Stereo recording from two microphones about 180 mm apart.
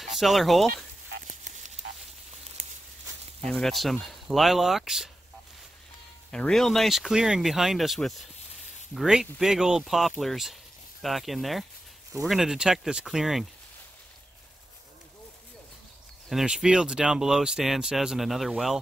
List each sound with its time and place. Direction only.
0.0 s speech: centre (ahead or behind)
1.2 s a sound: 45° right (ahead or behind)
3.4 s speech: centre (ahead or behind)
6.3 s speech: 5° left (ahead or behind)
16.3 s speech: centre (ahead or behind)